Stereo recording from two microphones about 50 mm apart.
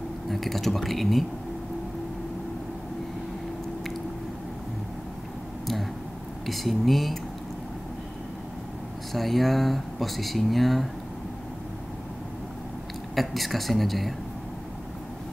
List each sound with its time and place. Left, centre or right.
0.3 s speech: centre
6.4 s speech: centre
9.1 s speech: centre
13.1 s speech: centre